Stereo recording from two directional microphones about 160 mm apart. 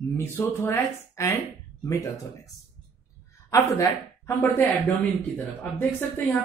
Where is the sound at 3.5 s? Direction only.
20° left (ahead or behind).